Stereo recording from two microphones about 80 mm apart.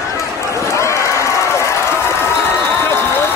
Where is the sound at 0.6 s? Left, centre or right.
Left.